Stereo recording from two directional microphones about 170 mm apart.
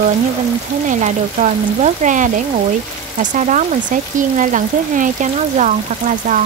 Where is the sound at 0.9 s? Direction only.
45° right (ahead or behind).